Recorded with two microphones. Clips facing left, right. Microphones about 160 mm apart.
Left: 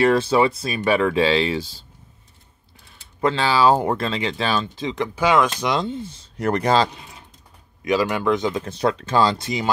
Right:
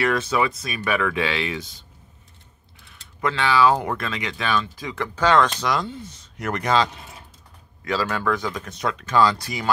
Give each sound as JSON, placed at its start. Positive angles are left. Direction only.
{"t": 0.0, "sound": "speech", "side_deg": 30}
{"t": 3.2, "sound": "speech", "side_deg": 30}
{"t": 5.7, "sound": "speech", "side_deg": 25}
{"t": 7.8, "sound": "speech", "side_deg": 15}